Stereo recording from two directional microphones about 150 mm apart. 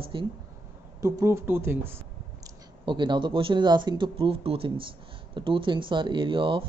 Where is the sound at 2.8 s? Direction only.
30° right (ahead or behind).